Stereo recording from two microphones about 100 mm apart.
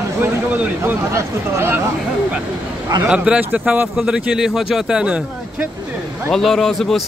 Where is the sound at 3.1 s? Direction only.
10° right (ahead or behind).